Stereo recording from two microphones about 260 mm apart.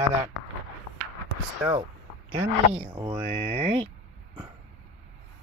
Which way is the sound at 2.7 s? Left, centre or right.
Right.